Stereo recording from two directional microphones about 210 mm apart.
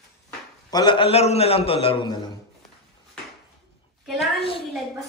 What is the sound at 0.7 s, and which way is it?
A man's voice, 20° left (ahead or behind).